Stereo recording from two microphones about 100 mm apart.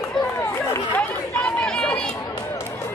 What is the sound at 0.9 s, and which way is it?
Chatter, 10° left (ahead or behind).